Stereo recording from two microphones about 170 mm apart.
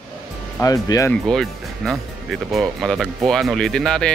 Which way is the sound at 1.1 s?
Centre (ahead or behind).